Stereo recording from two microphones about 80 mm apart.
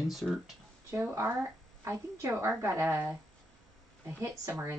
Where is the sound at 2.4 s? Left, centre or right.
Right.